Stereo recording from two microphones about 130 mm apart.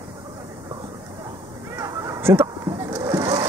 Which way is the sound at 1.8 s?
20° right (ahead or behind).